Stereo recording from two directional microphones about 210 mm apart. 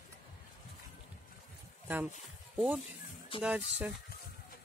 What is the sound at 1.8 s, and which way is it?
Speech, 5° right (ahead or behind).